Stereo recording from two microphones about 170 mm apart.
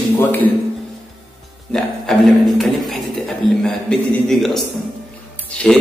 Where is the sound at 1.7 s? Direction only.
Centre (ahead or behind).